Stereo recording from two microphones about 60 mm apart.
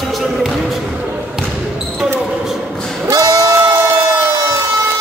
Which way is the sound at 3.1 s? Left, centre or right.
Right.